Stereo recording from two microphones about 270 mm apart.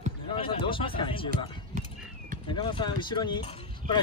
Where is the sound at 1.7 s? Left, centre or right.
Right.